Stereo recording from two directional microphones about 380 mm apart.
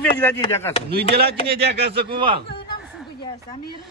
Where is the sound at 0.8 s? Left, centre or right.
Right.